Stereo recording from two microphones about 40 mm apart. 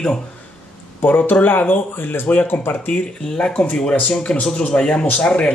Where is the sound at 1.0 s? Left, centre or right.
Left.